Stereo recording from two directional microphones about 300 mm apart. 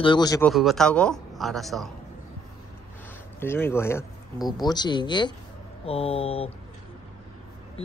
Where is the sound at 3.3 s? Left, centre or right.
Centre.